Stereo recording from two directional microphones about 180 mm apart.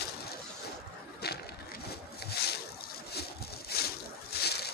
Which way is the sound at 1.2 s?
60° left (ahead or behind).